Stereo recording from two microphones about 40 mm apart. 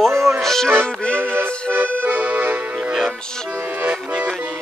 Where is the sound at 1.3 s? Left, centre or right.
Right.